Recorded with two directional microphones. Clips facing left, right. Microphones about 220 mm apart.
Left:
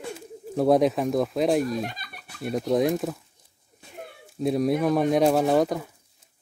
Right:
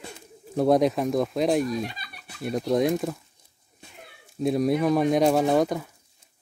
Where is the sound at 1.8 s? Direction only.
50° left (ahead or behind).